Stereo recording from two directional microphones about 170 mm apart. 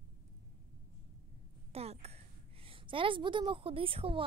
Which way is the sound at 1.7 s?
35° right (ahead or behind).